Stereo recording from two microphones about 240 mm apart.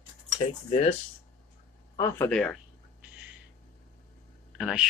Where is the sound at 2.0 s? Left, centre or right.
Centre.